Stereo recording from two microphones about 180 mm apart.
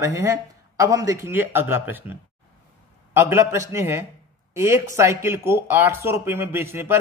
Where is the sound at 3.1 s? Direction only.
15° right (ahead or behind).